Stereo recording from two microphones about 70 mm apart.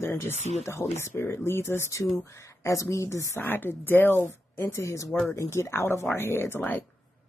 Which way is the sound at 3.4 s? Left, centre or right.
Left.